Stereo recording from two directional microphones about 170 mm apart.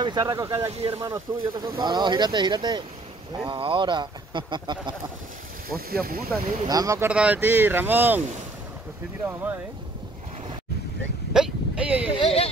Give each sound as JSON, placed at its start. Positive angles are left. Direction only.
{"t": 0.0, "sound": "speech", "side_deg": -25}
{"t": 5.8, "sound": "speech", "side_deg": -60}
{"t": 6.6, "sound": "speech", "side_deg": -20}
{"t": 7.1, "sound": "speech", "side_deg": -10}
{"t": 9.2, "sound": "speech", "side_deg": -10}
{"t": 11.3, "sound": "a sound", "side_deg": -5}
{"t": 12.1, "sound": "speech", "side_deg": 35}